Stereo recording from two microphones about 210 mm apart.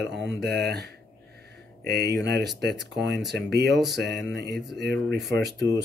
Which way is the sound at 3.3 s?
50° right (ahead or behind).